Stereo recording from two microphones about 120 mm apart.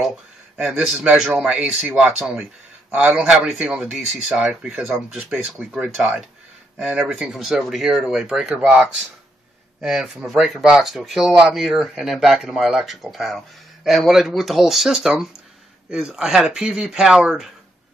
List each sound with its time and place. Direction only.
0.0 s speech: 5° right (ahead or behind)
9.8 s speech: 5° right (ahead or behind)